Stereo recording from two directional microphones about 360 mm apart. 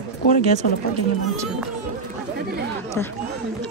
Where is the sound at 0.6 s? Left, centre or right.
Left.